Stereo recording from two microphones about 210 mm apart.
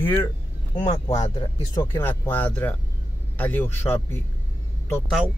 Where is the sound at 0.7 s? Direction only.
30° left (ahead or behind).